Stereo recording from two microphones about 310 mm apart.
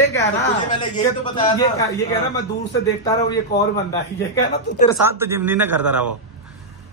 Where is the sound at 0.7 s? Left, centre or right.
Left.